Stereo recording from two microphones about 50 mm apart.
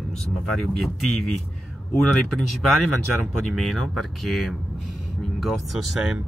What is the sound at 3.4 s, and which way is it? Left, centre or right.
Speech, centre.